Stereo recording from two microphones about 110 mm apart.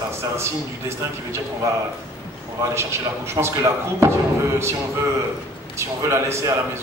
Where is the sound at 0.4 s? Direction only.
25° right (ahead or behind).